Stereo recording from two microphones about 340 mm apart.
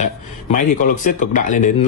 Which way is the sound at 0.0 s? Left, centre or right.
Left.